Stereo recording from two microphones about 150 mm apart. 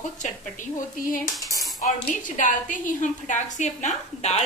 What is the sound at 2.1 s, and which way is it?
A woman's voice, 60° left (ahead or behind).